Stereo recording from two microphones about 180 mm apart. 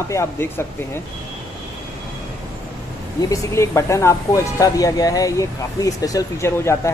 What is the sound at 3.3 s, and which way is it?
Speech, 15° left (ahead or behind).